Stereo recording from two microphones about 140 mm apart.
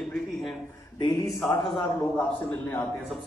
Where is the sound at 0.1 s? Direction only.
5° left (ahead or behind).